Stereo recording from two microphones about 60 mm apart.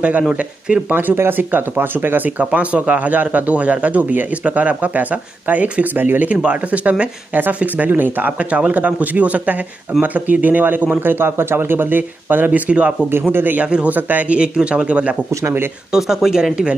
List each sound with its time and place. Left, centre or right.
0.3 s speech: centre
0.8 s speech: right
13.3 s speech: right
15.9 s speech: centre